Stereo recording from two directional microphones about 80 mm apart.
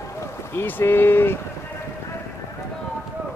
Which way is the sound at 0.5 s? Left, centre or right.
Left.